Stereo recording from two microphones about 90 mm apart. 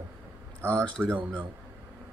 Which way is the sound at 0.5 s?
30° right (ahead or behind).